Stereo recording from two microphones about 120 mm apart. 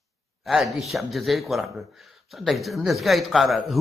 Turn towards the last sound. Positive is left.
turn(degrees=0)  # may be behind; listen again after turning